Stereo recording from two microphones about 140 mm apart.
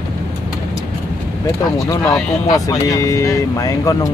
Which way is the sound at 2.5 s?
25° left (ahead or behind).